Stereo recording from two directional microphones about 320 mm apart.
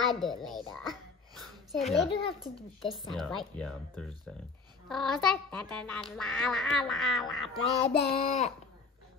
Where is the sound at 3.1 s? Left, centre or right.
Centre.